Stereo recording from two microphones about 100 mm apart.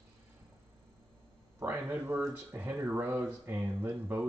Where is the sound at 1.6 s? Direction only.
20° right (ahead or behind).